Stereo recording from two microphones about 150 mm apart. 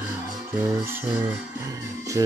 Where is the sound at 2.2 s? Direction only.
20° right (ahead or behind).